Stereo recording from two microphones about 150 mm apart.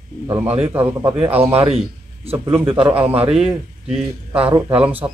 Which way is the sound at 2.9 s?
10° right (ahead or behind).